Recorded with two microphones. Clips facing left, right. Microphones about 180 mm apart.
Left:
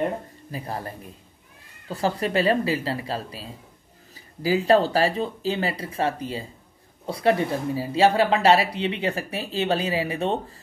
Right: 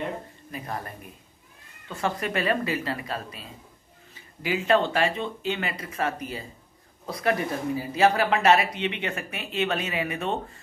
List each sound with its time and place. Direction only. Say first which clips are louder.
0.5 s speech: left 3 dB; 30° left (ahead or behind)